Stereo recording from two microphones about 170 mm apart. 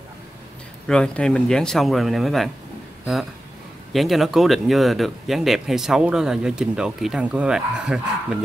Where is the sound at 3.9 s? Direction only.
Centre (ahead or behind).